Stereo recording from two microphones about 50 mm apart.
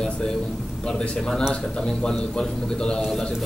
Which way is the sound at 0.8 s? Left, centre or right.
Centre.